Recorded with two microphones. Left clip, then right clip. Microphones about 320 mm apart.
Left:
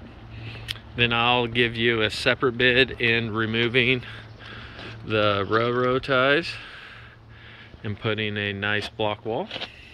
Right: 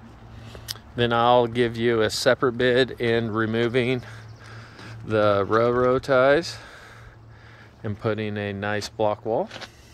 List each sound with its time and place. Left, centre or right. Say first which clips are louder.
0.9 s speech: right 3 dB; right
7.8 s speech: even; centre